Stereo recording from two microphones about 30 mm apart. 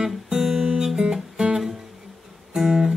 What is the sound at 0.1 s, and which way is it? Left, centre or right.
Guitar, centre.